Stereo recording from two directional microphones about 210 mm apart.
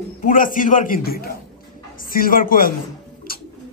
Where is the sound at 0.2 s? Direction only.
40° left (ahead or behind).